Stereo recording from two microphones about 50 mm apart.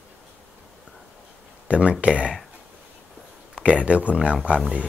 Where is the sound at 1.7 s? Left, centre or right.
Right.